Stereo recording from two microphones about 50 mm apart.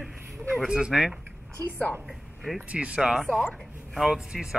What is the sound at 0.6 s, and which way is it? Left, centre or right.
Speech, centre.